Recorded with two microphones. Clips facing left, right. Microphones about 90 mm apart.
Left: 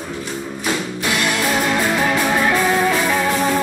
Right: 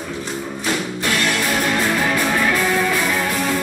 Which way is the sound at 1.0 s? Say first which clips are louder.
Left 1 dB; 15° left (ahead or behind).